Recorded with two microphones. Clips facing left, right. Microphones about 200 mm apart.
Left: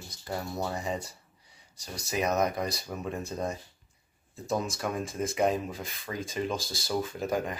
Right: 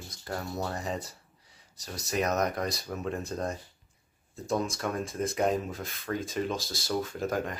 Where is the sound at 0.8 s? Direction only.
Centre (ahead or behind).